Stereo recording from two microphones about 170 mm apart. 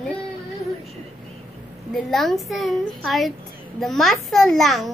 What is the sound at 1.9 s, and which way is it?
A child's voice, centre (ahead or behind).